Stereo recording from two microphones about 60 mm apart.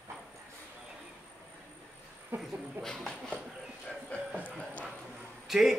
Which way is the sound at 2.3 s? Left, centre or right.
Right.